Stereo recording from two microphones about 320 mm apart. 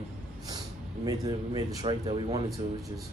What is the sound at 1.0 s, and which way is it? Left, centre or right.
Speech, centre.